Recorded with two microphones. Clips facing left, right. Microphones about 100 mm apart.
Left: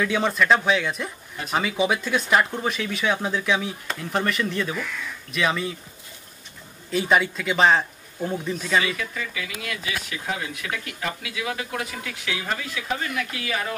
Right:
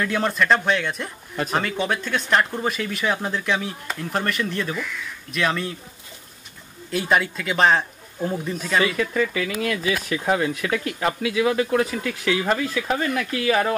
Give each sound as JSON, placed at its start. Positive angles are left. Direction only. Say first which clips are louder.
{"t": 0.0, "sound": "speech", "louder": "even", "side_deg": 0}
{"t": 6.9, "sound": "speech", "louder": "even", "side_deg": 0}
{"t": 9.4, "sound": "speech", "louder": "right 8 dB", "side_deg": -40}